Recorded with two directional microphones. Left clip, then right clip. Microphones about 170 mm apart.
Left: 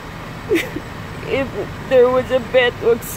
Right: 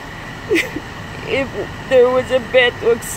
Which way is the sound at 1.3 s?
10° right (ahead or behind).